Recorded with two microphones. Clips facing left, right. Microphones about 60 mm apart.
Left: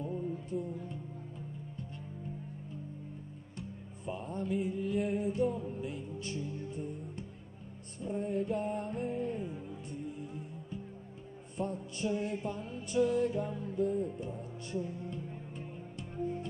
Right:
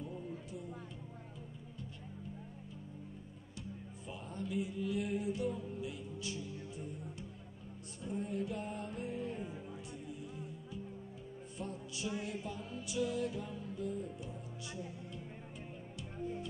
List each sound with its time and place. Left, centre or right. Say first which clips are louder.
0.0 s music: left 7 dB; left
3.5 s music: left 1 dB; left
11.5 s music: left 8 dB; left